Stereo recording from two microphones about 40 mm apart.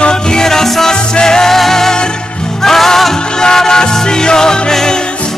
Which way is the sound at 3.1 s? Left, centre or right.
Left.